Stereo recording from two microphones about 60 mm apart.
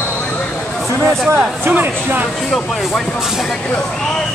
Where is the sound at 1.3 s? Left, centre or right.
Right.